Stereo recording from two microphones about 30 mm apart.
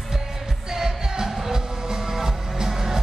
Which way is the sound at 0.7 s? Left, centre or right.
Right.